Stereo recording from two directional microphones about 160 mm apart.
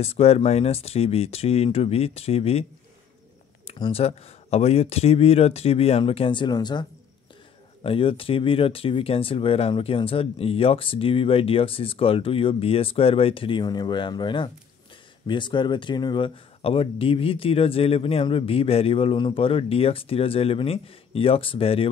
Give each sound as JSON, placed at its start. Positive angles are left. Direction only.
{"t": 0.0, "sound": "speech", "side_deg": 40}
{"t": 3.6, "sound": "speech", "side_deg": 35}